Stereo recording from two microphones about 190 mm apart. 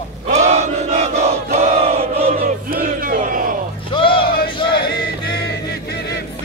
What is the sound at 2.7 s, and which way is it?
Battle cry, 50° right (ahead or behind).